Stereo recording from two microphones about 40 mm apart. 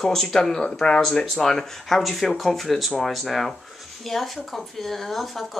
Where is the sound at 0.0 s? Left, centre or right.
Centre.